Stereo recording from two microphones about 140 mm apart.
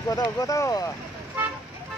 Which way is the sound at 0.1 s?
25° left (ahead or behind).